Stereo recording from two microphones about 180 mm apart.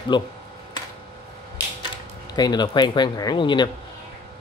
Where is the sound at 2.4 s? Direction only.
25° left (ahead or behind).